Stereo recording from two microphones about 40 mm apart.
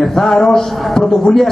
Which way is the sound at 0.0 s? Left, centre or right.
Centre.